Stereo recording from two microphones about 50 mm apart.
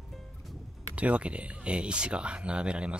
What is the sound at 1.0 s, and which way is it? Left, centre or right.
Speech, right.